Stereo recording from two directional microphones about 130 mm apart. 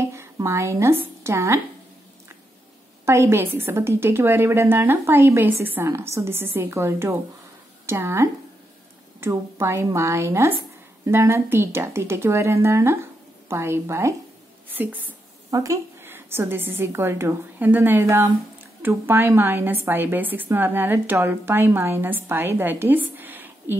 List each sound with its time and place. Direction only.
0.1 s speech: 20° right (ahead or behind)
3.1 s a woman's voice: 20° right (ahead or behind)
15.5 s a woman's voice: 25° right (ahead or behind)